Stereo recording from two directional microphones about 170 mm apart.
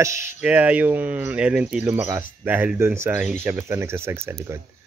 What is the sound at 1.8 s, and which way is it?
Speech, 15° right (ahead or behind).